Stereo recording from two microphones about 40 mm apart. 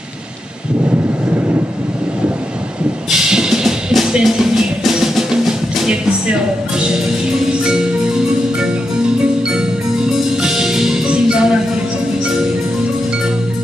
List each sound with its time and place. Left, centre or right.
3.1 s music: centre
3.6 s music: centre
7.7 s music: centre